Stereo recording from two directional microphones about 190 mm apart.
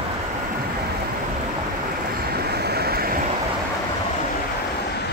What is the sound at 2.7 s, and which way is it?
Vehicle, 55° right (ahead or behind).